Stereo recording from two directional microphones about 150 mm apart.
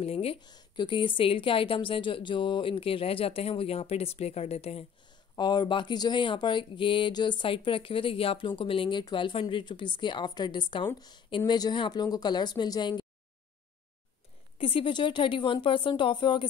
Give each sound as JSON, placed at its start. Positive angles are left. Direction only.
{"t": 0.0, "sound": "a woman's voice", "side_deg": 40}
{"t": 0.4, "sound": "a woman's voice", "side_deg": 30}
{"t": 5.3, "sound": "a woman's voice", "side_deg": 30}
{"t": 14.6, "sound": "a woman's voice", "side_deg": 35}